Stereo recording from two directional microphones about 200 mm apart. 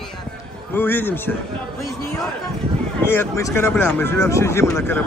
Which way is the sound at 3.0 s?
10° left (ahead or behind).